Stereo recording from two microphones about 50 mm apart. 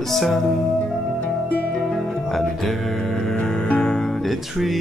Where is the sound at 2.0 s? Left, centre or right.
Centre.